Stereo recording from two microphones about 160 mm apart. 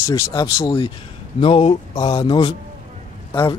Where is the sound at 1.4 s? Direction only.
35° left (ahead or behind).